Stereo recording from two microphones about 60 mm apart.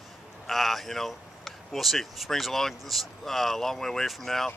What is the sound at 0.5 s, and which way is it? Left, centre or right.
Speech, centre.